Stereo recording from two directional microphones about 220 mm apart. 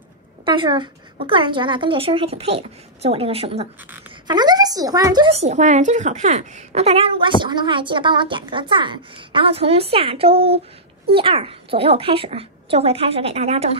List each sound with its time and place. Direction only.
0.5 s speech: 20° right (ahead or behind)